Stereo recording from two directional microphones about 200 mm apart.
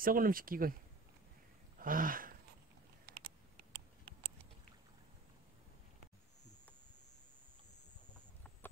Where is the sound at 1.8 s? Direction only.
45° right (ahead or behind).